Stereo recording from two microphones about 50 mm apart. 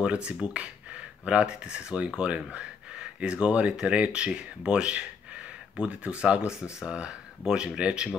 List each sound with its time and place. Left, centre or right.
0.0 s speech: right